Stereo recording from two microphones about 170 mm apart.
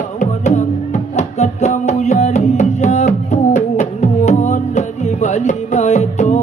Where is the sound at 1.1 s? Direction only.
40° left (ahead or behind).